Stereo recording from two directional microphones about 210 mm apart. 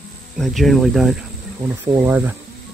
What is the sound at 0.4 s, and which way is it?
Speech, centre (ahead or behind).